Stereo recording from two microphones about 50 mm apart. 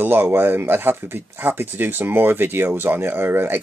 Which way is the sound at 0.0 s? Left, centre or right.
Right.